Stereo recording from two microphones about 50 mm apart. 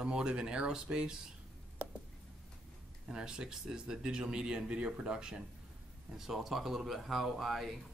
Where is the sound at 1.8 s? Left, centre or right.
Right.